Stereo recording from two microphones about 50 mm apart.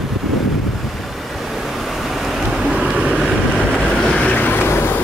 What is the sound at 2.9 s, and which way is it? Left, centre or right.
Vehicle, right.